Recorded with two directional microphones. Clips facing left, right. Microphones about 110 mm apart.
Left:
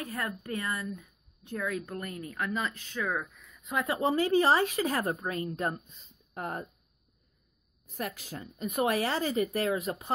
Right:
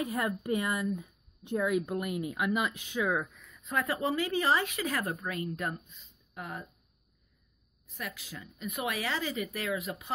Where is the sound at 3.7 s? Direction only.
20° left (ahead or behind); by 6.6 s 45° left (ahead or behind).